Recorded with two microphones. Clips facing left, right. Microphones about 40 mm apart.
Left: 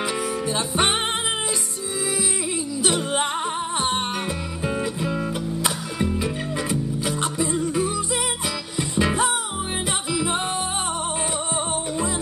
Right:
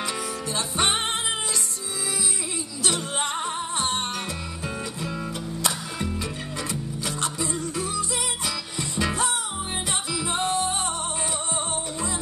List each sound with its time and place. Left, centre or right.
0.5 s music: centre
2.8 s music: centre